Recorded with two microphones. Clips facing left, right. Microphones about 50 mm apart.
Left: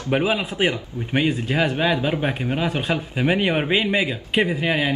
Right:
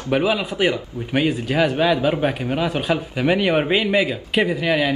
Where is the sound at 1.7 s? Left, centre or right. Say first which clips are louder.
Right 3 dB; left.